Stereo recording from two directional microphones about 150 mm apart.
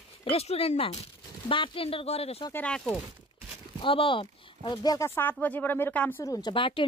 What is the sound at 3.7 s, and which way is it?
Speech, 35° left (ahead or behind).